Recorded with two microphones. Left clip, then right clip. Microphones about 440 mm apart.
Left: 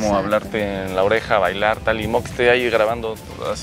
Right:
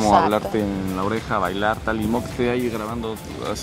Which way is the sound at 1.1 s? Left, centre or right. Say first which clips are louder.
Left 6 dB; left.